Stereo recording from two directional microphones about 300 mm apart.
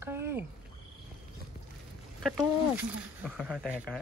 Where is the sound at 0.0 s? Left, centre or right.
Centre.